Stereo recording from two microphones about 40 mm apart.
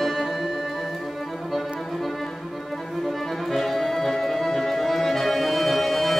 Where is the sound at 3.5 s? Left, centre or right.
Centre.